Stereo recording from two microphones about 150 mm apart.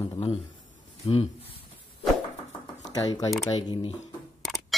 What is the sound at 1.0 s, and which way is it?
Speech, 40° left (ahead or behind).